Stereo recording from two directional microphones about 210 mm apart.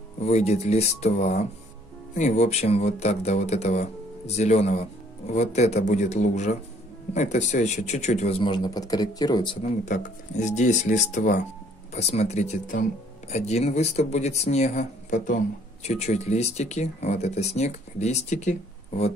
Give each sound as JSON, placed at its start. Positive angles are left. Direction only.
{"t": 0.2, "sound": "speech", "side_deg": 30}
{"t": 9.8, "sound": "speech", "side_deg": 35}